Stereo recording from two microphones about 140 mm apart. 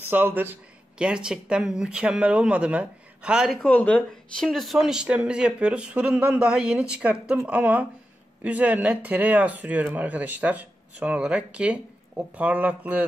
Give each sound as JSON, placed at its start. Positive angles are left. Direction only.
{"t": 0.1, "sound": "speech", "side_deg": -15}
{"t": 3.6, "sound": "speech", "side_deg": 10}